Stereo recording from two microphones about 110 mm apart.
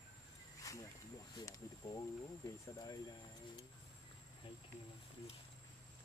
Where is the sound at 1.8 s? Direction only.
30° left (ahead or behind).